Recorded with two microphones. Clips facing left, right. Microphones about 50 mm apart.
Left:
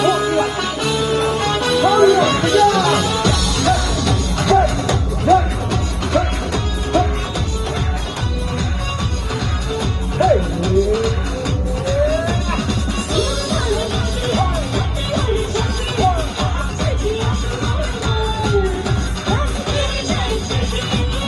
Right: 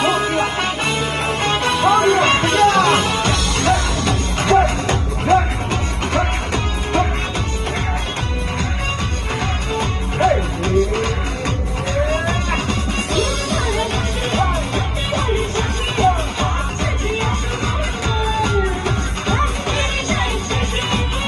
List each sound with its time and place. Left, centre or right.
0.0 s music: right
9.8 s music: right
12.1 s a sound: right
13.1 s music: right